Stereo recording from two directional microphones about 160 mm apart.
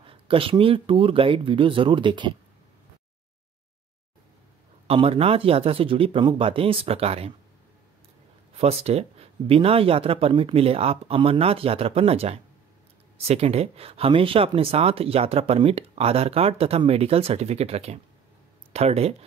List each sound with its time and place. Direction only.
0.0 s speech: 35° right (ahead or behind)
4.8 s speech: 35° right (ahead or behind)
8.5 s speech: 40° right (ahead or behind)